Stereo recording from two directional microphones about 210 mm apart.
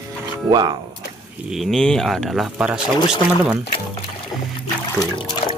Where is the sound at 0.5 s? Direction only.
20° right (ahead or behind).